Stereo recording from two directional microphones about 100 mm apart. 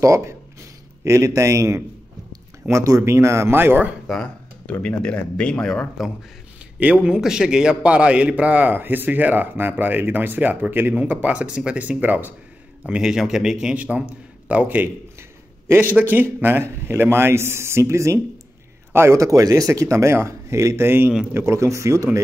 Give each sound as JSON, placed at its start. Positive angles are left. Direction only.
{"t": 0.0, "sound": "a man's voice", "side_deg": -30}
{"t": 4.1, "sound": "a sound", "side_deg": 10}
{"t": 4.7, "sound": "speech", "side_deg": 10}
{"t": 6.8, "sound": "a man's voice", "side_deg": -10}